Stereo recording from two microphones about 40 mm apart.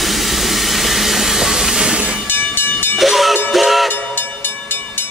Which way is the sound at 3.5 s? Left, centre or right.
Centre.